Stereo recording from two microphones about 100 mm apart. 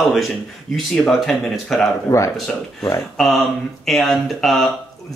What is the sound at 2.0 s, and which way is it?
Speech, 30° left (ahead or behind).